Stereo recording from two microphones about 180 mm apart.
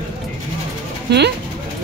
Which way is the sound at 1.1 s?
65° right (ahead or behind).